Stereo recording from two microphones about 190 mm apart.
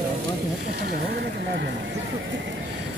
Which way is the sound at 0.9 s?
55° right (ahead or behind).